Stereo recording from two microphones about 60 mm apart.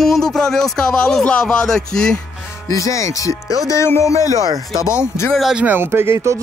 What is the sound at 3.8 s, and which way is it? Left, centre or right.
Speech, left.